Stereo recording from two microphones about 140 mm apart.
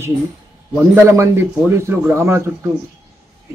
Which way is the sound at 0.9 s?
20° right (ahead or behind).